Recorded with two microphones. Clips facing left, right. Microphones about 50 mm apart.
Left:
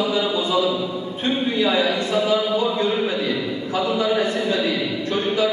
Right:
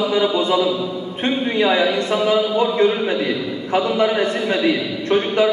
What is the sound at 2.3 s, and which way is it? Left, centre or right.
A man's voice, right.